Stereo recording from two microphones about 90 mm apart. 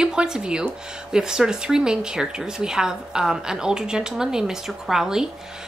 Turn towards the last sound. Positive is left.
turn(degrees=-5)  # may be behind; listen again after turning